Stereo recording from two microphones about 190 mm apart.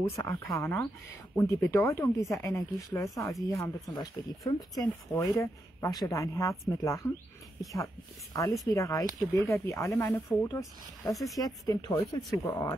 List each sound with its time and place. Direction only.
0.1 s speech: 10° left (ahead or behind)